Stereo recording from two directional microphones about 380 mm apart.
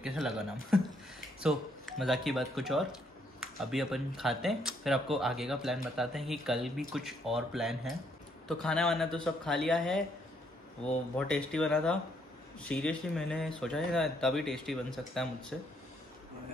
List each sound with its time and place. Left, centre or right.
0.0 s speech: centre
11.1 s speech: centre